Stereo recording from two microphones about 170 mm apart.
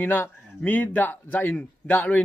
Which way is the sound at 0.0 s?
10° left (ahead or behind).